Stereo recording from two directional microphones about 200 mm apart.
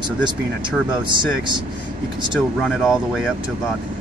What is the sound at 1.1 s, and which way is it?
Speech, 25° right (ahead or behind).